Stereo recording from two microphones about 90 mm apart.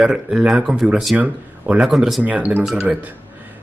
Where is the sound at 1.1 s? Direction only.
15° right (ahead or behind).